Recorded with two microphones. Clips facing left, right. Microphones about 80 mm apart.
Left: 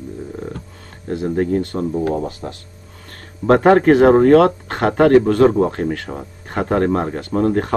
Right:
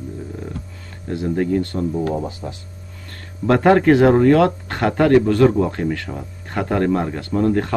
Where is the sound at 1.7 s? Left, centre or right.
Left.